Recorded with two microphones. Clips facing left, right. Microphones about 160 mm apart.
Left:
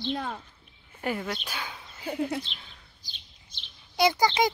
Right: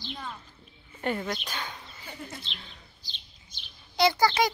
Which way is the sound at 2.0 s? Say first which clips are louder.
Left 13 dB; 65° left (ahead or behind).